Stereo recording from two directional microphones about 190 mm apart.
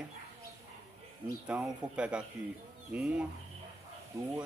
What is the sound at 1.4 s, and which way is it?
Speech, 5° right (ahead or behind).